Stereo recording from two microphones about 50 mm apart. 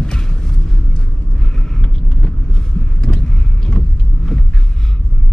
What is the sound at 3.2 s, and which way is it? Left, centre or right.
Vehicle, centre.